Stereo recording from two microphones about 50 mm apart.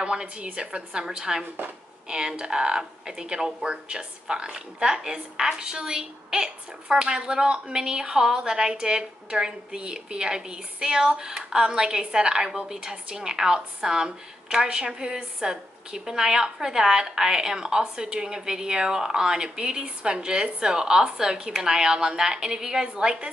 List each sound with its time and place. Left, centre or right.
0.0 s speech: centre